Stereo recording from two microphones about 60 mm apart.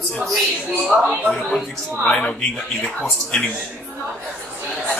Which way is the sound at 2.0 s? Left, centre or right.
Centre.